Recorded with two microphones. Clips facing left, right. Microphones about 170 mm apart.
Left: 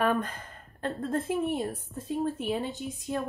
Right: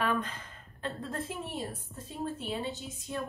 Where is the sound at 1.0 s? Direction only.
50° left (ahead or behind).